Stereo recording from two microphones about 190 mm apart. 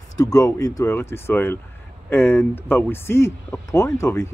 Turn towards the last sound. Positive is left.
turn(degrees=15)  # may be behind; listen again after turning